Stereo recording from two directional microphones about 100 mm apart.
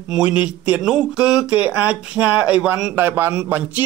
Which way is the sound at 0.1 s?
10° right (ahead or behind).